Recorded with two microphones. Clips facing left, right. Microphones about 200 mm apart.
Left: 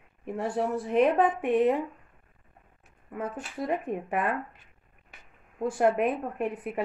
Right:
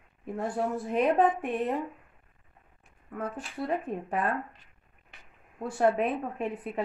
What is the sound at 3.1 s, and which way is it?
Speech, centre (ahead or behind).